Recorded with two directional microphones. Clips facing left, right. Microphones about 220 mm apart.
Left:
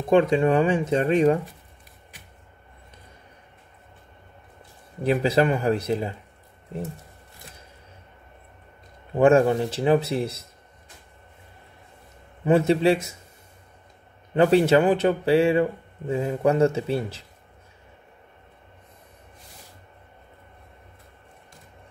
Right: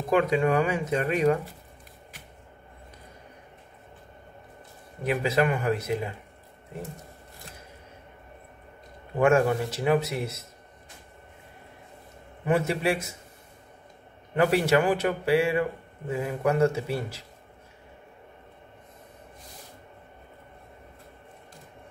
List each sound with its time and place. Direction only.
0.1 s speech: 30° left (ahead or behind)
5.0 s speech: 35° left (ahead or behind)
9.2 s speech: 30° left (ahead or behind)
12.4 s speech: 25° left (ahead or behind)
14.3 s speech: 25° left (ahead or behind)